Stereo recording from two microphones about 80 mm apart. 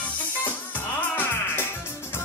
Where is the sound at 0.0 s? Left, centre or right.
Left.